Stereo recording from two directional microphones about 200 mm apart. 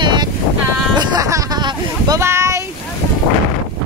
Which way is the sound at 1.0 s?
20° right (ahead or behind).